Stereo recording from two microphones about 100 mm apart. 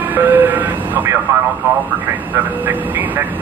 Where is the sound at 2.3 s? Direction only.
20° right (ahead or behind).